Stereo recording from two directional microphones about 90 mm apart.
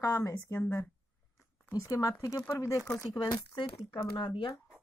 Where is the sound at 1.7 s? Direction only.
40° left (ahead or behind).